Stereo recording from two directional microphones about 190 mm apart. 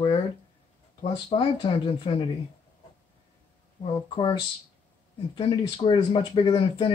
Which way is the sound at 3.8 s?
25° left (ahead or behind).